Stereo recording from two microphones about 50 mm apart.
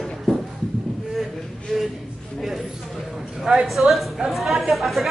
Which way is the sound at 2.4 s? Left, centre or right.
Centre.